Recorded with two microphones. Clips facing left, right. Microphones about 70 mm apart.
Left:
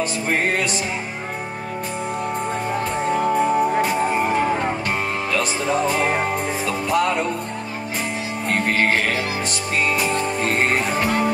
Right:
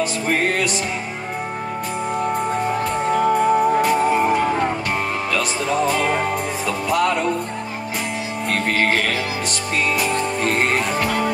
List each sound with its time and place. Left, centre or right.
0.3 s music: centre
3.1 s music: centre
5.9 s music: centre
8.5 s music: centre
9.9 s music: centre